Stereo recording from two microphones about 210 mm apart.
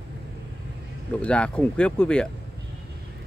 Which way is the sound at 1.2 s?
5° left (ahead or behind).